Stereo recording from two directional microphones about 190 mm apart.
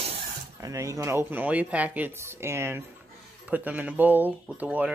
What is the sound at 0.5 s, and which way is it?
Speech, 15° right (ahead or behind).